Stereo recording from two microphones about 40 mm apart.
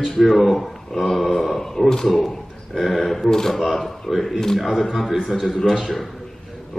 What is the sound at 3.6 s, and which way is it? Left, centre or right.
A man's voice, centre.